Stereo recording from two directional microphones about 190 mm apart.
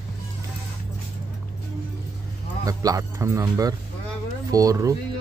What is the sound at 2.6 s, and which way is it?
Speech, 20° right (ahead or behind).